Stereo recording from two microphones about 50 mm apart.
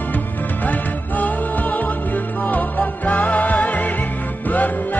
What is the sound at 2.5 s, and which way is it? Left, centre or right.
Music, left.